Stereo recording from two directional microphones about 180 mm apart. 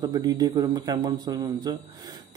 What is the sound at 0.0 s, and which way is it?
A man's voice, 20° right (ahead or behind).